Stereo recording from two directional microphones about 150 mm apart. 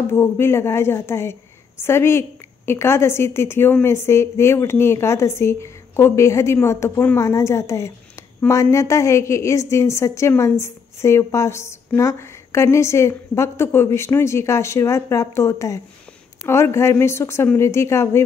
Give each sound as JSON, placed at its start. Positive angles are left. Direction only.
{"t": 0.1, "sound": "a woman's voice", "side_deg": 15}